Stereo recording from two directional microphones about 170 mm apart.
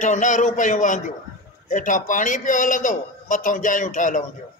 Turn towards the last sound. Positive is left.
turn(degrees=50)  # may be behind; listen again after turning